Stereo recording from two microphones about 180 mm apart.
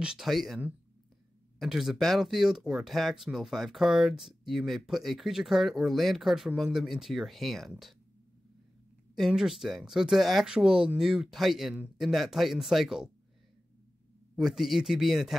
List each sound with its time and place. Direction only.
0.0 s speech: 5° right (ahead or behind)
9.1 s speech: centre (ahead or behind)
14.3 s speech: centre (ahead or behind)